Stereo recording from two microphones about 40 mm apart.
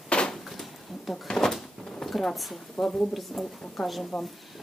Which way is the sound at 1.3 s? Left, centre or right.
Centre.